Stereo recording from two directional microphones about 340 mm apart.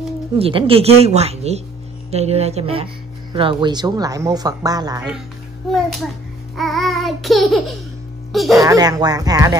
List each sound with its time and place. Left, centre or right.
0.4 s speech: centre
6.5 s babbling: centre
8.3 s speech: centre
8.5 s speech: centre